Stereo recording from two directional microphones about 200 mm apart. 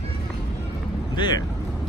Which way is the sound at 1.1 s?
20° left (ahead or behind).